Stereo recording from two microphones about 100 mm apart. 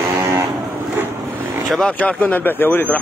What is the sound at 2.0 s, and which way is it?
Speech, 15° left (ahead or behind).